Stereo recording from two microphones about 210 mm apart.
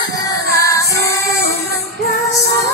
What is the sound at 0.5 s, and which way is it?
Music, 15° left (ahead or behind).